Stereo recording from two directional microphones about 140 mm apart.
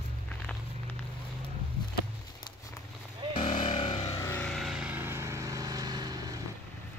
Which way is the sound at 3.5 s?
65° left (ahead or behind).